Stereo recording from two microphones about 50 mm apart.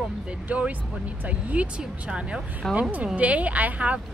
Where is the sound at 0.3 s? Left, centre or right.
Right.